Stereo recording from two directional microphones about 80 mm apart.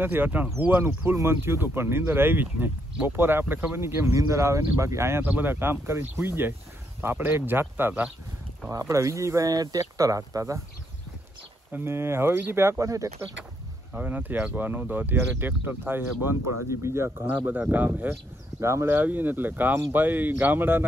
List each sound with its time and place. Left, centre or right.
0.0 s speech: right
8.6 s speech: right
9.5 s speech: right
11.7 s speech: right
13.9 s speech: right
17.6 s speech: right
18.6 s speech: right
18.9 s speech: right